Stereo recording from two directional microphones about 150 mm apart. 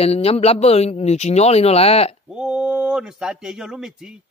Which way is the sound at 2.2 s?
5° right (ahead or behind).